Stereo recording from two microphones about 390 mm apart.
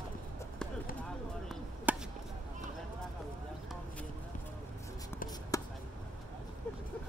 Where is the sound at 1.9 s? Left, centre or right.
Centre.